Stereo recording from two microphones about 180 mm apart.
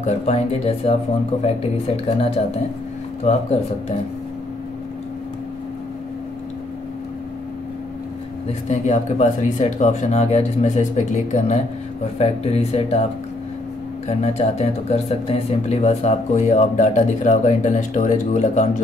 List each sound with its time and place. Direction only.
0.0 s speech: 35° left (ahead or behind)
2.0 s speech: 35° left (ahead or behind)
8.6 s speech: 40° left (ahead or behind)
14.0 s speech: 35° left (ahead or behind)